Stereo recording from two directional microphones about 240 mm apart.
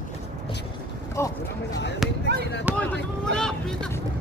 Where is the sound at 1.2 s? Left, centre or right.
Centre.